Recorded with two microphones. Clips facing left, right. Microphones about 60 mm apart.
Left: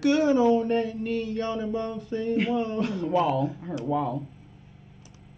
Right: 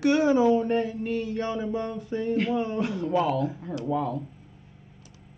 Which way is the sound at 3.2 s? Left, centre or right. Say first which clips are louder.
Left 2 dB; centre.